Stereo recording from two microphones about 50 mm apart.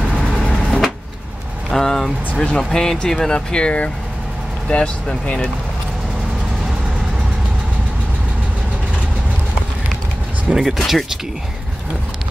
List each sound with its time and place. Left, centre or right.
0.5 s vehicle: centre
1.7 s speech: centre
10.5 s speech: centre